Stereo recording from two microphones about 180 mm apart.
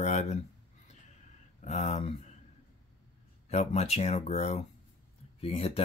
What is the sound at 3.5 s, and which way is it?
Speech, 35° left (ahead or behind).